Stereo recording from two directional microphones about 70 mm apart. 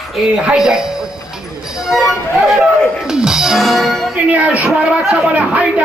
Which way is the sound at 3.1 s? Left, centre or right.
Centre.